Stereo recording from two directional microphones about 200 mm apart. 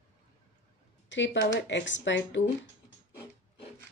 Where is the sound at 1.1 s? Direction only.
65° left (ahead or behind).